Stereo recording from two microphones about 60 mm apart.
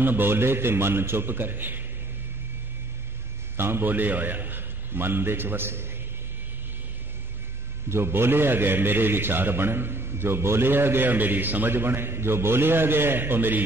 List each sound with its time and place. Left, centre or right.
0.0 s a man's voice: right
3.5 s a man's voice: right
7.9 s a man's voice: right